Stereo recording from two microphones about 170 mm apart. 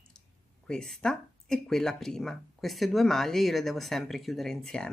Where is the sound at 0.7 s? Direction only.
5° left (ahead or behind).